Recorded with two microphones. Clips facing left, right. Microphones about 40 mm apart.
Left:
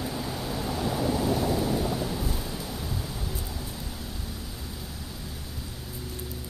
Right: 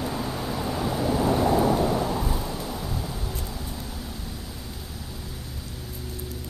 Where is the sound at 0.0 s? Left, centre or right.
Centre.